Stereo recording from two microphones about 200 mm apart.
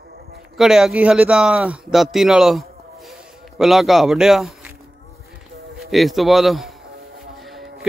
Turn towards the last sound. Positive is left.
turn(degrees=0)  # may be behind; listen again after turning